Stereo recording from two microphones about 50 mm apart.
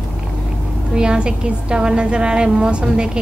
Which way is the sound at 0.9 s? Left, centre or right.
Centre.